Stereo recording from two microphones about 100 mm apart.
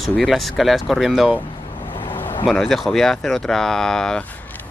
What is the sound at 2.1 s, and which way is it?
Vehicle, 20° left (ahead or behind).